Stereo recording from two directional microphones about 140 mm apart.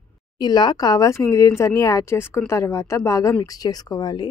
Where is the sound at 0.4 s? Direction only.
30° left (ahead or behind).